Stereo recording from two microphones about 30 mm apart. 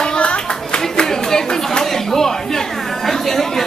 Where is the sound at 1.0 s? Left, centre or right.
Centre.